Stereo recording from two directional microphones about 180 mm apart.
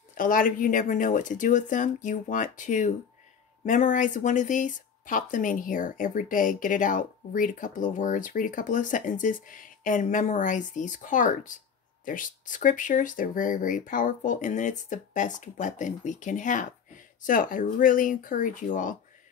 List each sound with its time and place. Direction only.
0.1 s speech: 50° left (ahead or behind)